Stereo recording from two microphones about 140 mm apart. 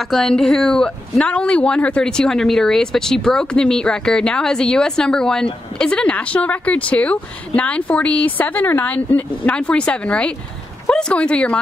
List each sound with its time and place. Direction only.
0.0 s speech: centre (ahead or behind)